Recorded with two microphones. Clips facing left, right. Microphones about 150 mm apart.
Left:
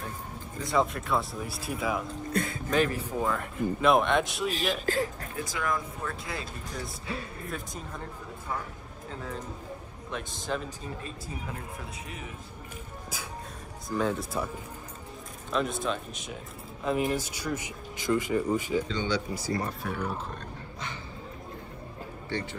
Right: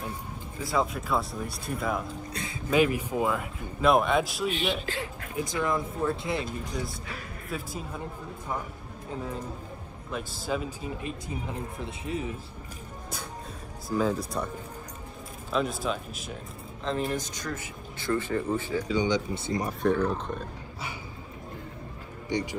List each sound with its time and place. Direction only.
0.6 s speech: centre (ahead or behind)
2.3 s speech: 50° left (ahead or behind)
2.7 s speech: 10° right (ahead or behind)
4.8 s speech: 40° left (ahead or behind)
5.3 s speech: 20° right (ahead or behind)
7.4 s speech: 5° right (ahead or behind)
10.1 s speech: 5° right (ahead or behind)
11.0 s speech: 20° right (ahead or behind)
13.8 s speech: centre (ahead or behind)
15.5 s speech: centre (ahead or behind)
16.8 s speech: 10° left (ahead or behind)
18.9 s speech: 15° right (ahead or behind)
19.8 s speech: 5° left (ahead or behind)
22.3 s speech: 15° right (ahead or behind)